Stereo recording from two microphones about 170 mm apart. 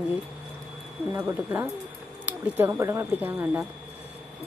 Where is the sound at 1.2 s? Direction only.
15° right (ahead or behind).